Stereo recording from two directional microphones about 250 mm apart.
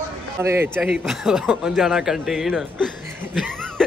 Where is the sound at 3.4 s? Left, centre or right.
Centre.